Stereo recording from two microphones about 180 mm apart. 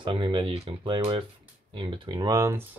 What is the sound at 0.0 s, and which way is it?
Speech, 30° right (ahead or behind).